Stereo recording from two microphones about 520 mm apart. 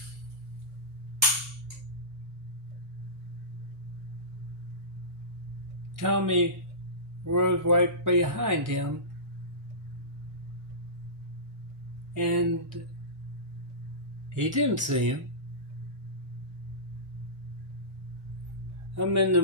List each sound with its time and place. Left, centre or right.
5.9 s speech: right
12.1 s speech: right
14.3 s speech: right
18.9 s speech: right